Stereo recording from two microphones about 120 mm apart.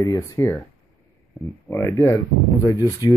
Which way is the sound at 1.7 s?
25° left (ahead or behind).